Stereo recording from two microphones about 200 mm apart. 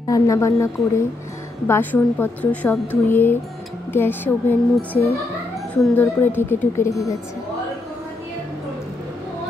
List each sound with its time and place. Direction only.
0.1 s a woman's voice: 15° left (ahead or behind)